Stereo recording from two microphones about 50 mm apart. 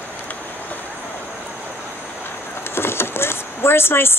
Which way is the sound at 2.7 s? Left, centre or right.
Left.